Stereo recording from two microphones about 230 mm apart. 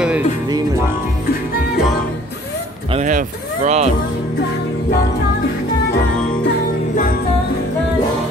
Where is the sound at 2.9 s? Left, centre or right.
Right.